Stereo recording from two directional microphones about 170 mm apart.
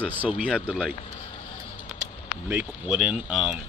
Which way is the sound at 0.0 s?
10° right (ahead or behind).